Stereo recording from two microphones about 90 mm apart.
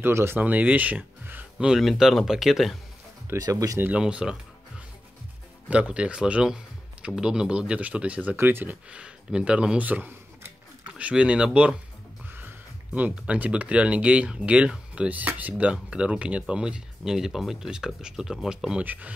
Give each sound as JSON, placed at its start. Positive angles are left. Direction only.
{"t": 0.0, "sound": "speech", "side_deg": -25}
{"t": 0.4, "sound": "speech", "side_deg": -15}
{"t": 1.7, "sound": "speech", "side_deg": -5}
{"t": 3.3, "sound": "speech", "side_deg": -40}
{"t": 4.0, "sound": "music", "side_deg": -10}
{"t": 5.7, "sound": "speech", "side_deg": -15}
{"t": 12.3, "sound": "speech", "side_deg": -25}